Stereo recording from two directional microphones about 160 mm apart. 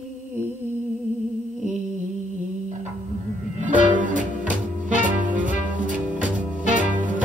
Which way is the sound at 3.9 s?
55° right (ahead or behind).